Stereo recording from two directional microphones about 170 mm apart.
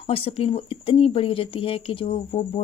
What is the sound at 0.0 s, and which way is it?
Speech, 35° left (ahead or behind).